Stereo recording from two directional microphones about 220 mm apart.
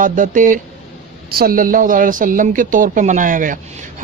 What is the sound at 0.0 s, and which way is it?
A man's voice, 35° right (ahead or behind).